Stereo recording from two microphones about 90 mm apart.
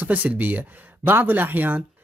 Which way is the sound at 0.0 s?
20° right (ahead or behind).